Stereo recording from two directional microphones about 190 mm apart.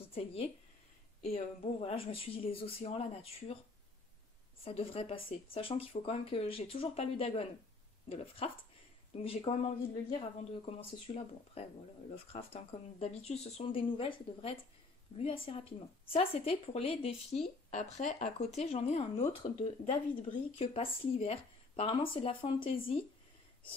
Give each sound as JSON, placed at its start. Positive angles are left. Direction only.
{"t": 0.1, "sound": "speech", "side_deg": 30}
{"t": 4.6, "sound": "speech", "side_deg": 30}
{"t": 10.8, "sound": "speech", "side_deg": 30}